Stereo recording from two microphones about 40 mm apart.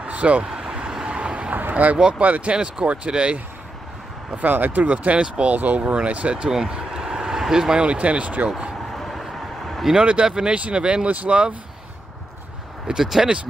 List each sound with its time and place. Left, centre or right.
0.0 s vehicle: right
1.5 s a sound: right
2.1 s speech: right
4.3 s speech: right
4.9 s speech: right
6.7 s vehicle: centre
7.7 s speech: right
8.9 s a sound: centre
9.9 s speech: right
11.1 s speech: right
12.8 s speech: centre